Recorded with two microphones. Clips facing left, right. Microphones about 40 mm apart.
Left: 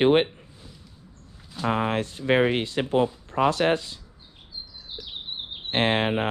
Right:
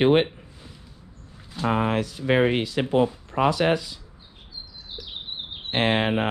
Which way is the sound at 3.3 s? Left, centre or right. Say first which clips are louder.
Even; right.